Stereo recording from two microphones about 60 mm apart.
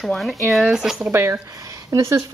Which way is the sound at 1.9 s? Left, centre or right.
Right.